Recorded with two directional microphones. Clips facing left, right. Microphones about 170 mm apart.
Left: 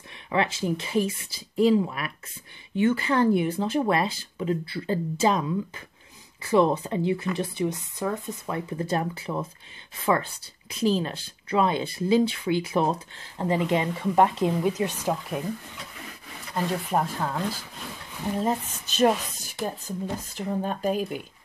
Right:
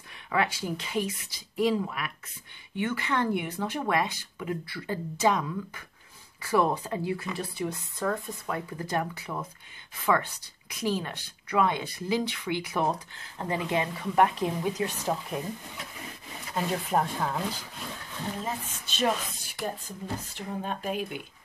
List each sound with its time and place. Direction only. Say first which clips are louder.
0.3 s speech: left 3 dB; 25° left (ahead or behind)
16.9 s speech: even; 5° left (ahead or behind)
18.4 s speech: left 8 dB; 40° left (ahead or behind)